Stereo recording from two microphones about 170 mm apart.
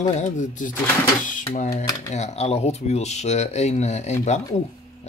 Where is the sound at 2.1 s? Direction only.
40° left (ahead or behind).